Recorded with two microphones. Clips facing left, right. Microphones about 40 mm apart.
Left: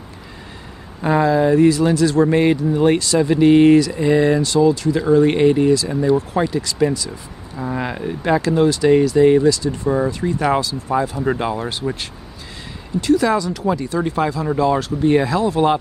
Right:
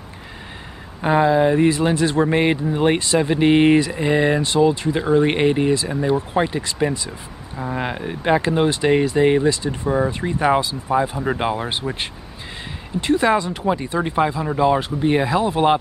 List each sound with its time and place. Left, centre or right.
1.0 s speech: right
7.1 s speech: centre
13.0 s speech: right